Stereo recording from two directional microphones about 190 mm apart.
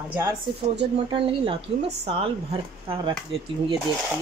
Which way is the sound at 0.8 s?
30° right (ahead or behind).